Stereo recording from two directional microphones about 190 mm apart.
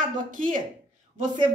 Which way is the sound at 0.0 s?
45° right (ahead or behind).